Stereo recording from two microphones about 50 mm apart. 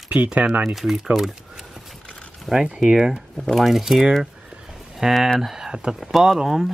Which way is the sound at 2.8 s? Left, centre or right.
Centre.